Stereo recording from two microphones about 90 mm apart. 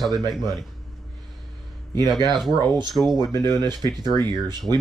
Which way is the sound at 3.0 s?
25° right (ahead or behind).